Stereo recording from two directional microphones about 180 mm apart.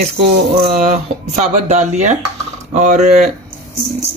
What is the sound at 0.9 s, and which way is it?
Speech, 40° right (ahead or behind).